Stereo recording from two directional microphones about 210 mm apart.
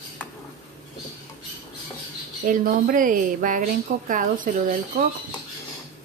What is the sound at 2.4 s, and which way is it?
A woman's voice, 40° right (ahead or behind).